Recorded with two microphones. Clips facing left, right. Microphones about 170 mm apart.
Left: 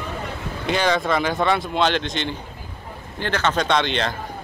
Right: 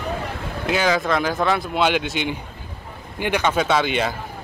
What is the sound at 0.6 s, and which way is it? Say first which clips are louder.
Speech: even; 5° right (ahead or behind).